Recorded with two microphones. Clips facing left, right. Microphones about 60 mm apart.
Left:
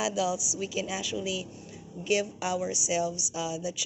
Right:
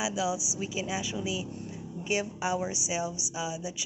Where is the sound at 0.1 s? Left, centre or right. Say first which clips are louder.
Left 1 dB; right.